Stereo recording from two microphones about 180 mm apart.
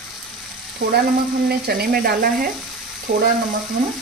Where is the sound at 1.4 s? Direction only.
60° right (ahead or behind).